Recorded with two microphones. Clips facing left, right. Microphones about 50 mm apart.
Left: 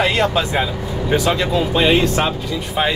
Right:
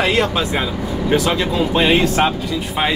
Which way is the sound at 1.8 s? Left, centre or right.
Centre.